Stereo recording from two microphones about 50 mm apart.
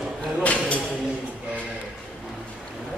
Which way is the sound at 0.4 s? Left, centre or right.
Left.